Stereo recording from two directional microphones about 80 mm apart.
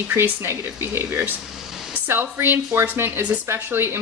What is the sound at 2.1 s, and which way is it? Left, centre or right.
A woman's voice, right.